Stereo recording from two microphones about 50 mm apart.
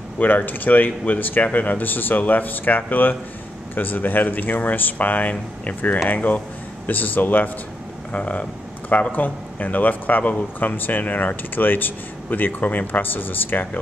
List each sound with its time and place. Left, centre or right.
0.2 s speech: left
8.1 s speech: left